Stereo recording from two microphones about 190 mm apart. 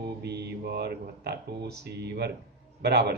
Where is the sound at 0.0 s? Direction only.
60° right (ahead or behind).